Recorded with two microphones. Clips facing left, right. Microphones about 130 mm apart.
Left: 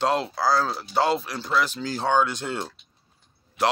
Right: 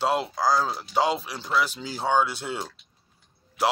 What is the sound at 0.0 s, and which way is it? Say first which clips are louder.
A man's voice: left 1 dB; 10° right (ahead or behind).